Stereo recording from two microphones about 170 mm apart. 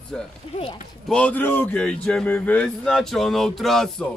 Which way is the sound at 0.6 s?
35° left (ahead or behind).